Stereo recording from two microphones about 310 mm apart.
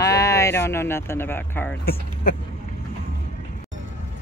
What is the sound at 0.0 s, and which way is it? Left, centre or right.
Speech, centre.